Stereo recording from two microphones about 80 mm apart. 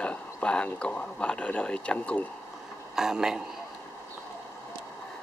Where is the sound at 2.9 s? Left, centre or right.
Centre.